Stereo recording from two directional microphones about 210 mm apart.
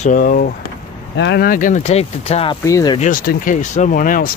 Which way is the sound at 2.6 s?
15° left (ahead or behind).